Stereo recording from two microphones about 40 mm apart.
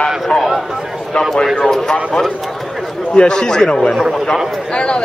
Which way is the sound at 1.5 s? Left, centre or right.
Centre.